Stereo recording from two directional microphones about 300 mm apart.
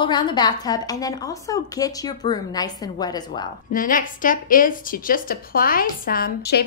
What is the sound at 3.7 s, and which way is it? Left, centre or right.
A woman's voice, left.